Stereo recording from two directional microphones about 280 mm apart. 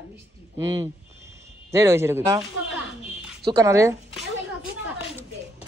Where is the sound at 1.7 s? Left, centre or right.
Centre.